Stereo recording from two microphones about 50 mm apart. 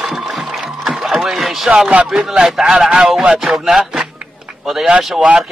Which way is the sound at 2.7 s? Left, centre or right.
Centre.